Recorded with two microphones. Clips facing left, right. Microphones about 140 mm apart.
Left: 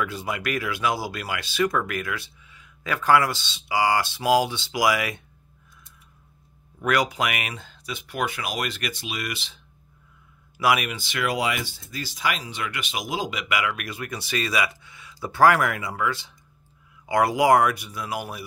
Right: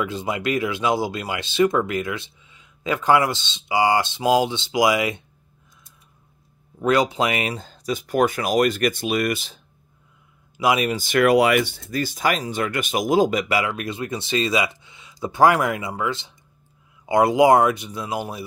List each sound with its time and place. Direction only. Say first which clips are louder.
0.0 s speech: right 4 dB; 20° right (ahead or behind)
6.8 s speech: right 4 dB; 25° right (ahead or behind); by 9.6 s 45° right (ahead or behind)
10.6 s speech: right 2 dB; 25° right (ahead or behind)
10.9 s speech: right 10 dB; 45° right (ahead or behind); by 18.4 s 25° right (ahead or behind)